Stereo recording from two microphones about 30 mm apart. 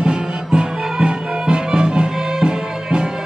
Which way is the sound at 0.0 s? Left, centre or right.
Right.